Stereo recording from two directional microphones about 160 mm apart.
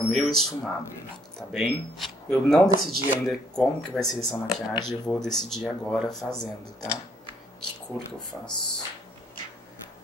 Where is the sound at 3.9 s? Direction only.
Centre (ahead or behind).